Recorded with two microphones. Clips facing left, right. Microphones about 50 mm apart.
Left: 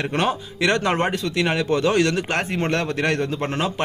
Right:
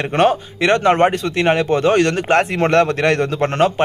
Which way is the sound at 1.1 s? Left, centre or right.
Right.